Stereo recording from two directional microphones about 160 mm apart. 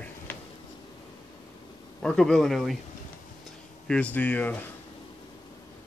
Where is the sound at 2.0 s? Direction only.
5° left (ahead or behind).